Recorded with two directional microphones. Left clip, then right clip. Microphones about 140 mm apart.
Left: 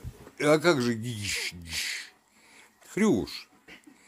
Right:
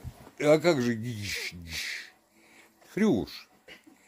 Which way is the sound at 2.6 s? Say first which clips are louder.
Left 1 dB; 15° right (ahead or behind).